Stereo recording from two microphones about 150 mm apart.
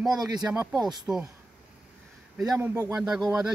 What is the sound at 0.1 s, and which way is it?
Speech, 25° right (ahead or behind).